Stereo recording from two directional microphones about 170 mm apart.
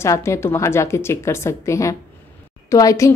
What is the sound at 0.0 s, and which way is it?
A woman's voice, 15° left (ahead or behind).